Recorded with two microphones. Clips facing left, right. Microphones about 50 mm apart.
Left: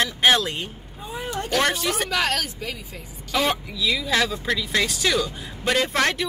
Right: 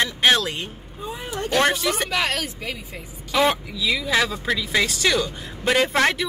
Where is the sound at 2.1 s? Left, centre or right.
Right.